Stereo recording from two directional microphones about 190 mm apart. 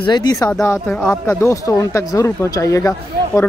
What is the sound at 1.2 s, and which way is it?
Speech, 15° left (ahead or behind).